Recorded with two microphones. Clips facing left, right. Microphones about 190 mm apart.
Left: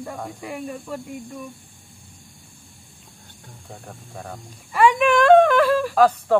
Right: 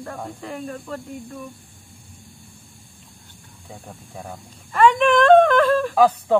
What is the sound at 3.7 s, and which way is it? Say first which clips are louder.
Speech: right 1 dB; 10° right (ahead or behind).